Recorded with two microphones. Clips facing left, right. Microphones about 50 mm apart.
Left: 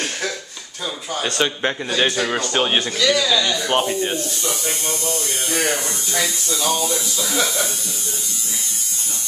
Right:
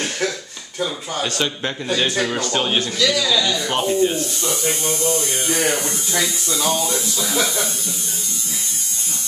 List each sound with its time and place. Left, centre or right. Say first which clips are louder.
1.2 s a man's voice: left 3 dB; centre
3.0 s a man's voice: left 1 dB; centre
3.6 s a man's voice: right 1 dB; centre
4.5 s hum: right 3 dB; centre
5.5 s a man's voice: right 1 dB; centre
6.6 s speech: even; centre
7.2 s speech: even; centre